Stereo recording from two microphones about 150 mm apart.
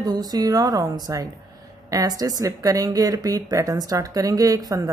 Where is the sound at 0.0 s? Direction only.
25° right (ahead or behind).